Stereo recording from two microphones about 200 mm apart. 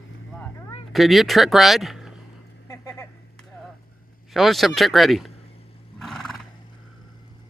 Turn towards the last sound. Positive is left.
turn(degrees=0)  # may be behind; listen again after turning